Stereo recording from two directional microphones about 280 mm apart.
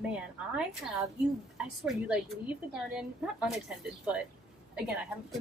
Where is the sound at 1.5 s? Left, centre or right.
Centre.